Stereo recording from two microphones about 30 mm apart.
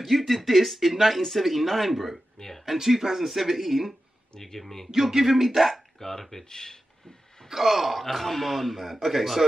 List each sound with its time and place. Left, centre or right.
0.0 s speech: centre
2.3 s speech: centre
2.6 s speech: centre
4.4 s speech: centre
4.9 s speech: centre
5.9 s speech: centre
7.4 s speech: centre